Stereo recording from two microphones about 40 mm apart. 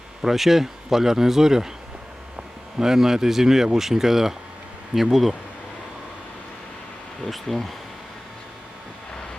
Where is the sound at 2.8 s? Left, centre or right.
Centre.